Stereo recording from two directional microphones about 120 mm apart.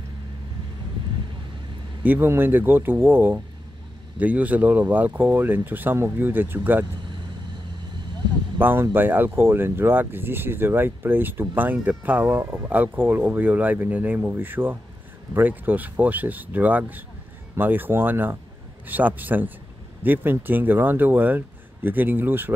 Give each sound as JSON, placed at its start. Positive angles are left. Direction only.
{"t": 2.0, "sound": "speech", "side_deg": -20}
{"t": 8.5, "sound": "speech", "side_deg": -20}